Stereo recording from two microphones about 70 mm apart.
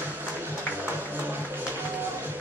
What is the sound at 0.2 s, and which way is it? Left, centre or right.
Music, right.